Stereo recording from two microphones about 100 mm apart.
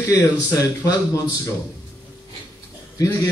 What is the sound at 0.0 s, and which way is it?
A man's voice, 30° left (ahead or behind).